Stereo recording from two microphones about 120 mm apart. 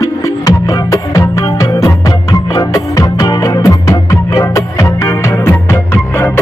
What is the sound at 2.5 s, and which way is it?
Music, 30° left (ahead or behind).